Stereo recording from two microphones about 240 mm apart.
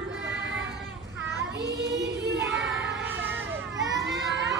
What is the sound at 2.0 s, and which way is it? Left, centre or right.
Child singing, right.